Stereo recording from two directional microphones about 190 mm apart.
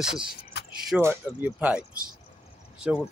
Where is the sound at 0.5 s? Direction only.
60° left (ahead or behind).